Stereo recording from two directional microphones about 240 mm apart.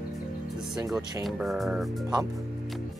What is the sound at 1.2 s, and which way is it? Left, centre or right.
Speech, centre.